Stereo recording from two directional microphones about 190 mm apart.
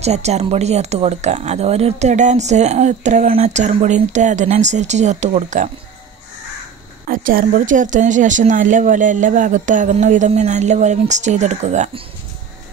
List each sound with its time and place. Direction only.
0.0 s speech: 35° right (ahead or behind)
7.1 s speech: 45° right (ahead or behind)